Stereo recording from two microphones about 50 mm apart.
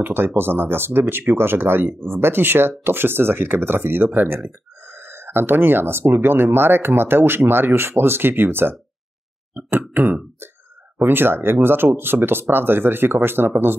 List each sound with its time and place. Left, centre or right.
0.0 s speech: right